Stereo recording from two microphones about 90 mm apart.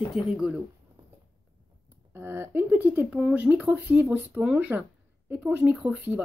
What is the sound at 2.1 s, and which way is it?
Speech, 25° right (ahead or behind).